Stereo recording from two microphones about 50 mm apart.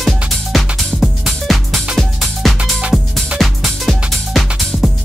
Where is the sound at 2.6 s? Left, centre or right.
Right.